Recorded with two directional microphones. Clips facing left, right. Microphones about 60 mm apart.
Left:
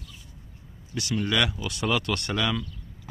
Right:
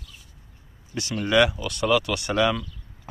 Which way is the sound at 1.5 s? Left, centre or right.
Centre.